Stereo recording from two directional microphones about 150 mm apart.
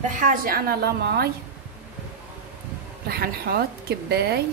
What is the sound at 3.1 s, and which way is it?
A woman's voice, 80° right.